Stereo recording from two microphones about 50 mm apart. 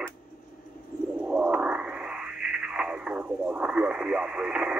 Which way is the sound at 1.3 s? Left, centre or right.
Right.